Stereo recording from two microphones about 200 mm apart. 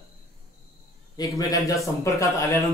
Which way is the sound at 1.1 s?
20° left (ahead or behind).